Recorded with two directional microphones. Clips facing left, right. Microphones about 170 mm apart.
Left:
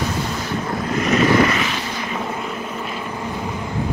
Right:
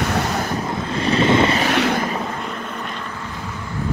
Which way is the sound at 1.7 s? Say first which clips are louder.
Right 8 dB; 65° right (ahead or behind).